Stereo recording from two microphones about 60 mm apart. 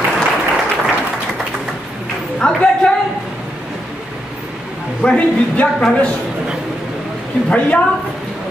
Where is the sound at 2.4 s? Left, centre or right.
Centre.